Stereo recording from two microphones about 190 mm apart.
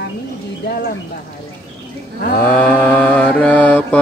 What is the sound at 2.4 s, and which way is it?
Mantra, 5° left (ahead or behind).